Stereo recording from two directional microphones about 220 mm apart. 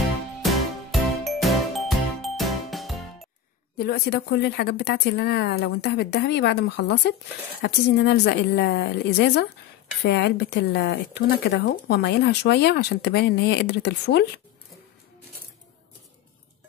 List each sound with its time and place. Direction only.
0.4 s jingle: centre (ahead or behind)
3.7 s speech: 45° left (ahead or behind)